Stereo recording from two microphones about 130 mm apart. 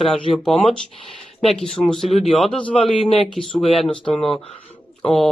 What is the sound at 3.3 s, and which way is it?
Speech, centre (ahead or behind).